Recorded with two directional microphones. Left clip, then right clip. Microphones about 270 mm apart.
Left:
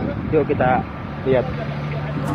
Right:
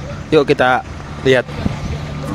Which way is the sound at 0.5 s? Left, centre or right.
Right.